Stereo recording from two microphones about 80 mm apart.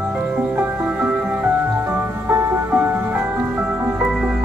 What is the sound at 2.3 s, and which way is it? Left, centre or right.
Music, right.